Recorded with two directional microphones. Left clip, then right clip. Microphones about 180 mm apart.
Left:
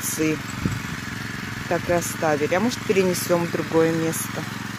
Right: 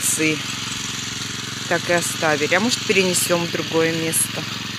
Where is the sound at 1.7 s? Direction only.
Centre (ahead or behind).